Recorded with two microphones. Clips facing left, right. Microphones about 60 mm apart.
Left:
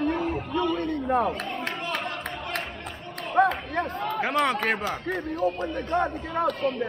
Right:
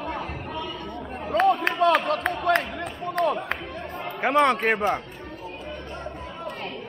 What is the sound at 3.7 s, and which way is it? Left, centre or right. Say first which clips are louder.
Speech: left 5 dB; left.